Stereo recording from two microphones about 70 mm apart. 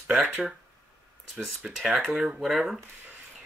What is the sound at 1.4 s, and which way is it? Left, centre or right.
Speech, centre.